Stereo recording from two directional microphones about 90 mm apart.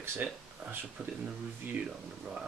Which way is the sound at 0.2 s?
10° right (ahead or behind).